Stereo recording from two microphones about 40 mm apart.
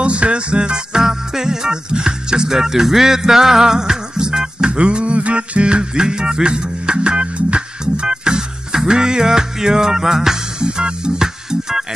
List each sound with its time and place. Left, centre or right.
0.0 s music: right; by 10.4 s centre
10.6 s music: right